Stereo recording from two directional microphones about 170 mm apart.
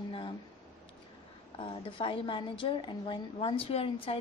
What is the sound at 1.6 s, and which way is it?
A woman's voice, 30° left (ahead or behind).